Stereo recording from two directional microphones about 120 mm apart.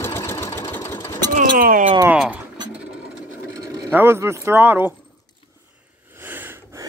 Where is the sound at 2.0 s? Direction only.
10° right (ahead or behind).